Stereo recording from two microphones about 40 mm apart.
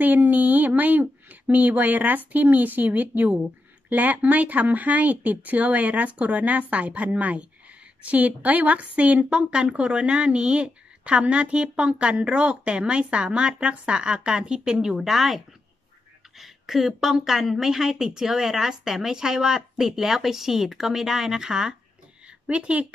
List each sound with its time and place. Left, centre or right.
0.0 s a woman's voice: right; by 21.7 s centre
22.5 s speech: right